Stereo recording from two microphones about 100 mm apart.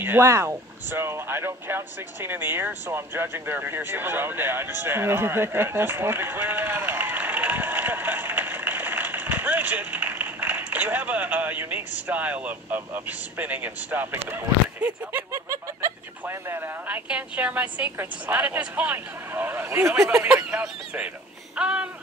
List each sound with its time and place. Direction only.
0.0 s speech: 25° right (ahead or behind)
15.3 s speech: 30° right (ahead or behind); by 21.8 s 10° right (ahead or behind)